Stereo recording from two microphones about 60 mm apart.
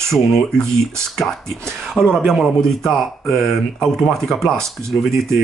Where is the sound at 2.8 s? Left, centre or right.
Centre.